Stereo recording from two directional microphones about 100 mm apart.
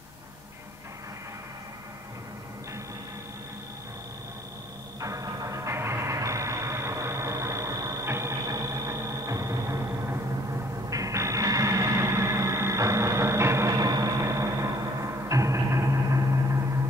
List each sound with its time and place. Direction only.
5.0 s music: 35° right (ahead or behind)
13.7 s music: 40° right (ahead or behind)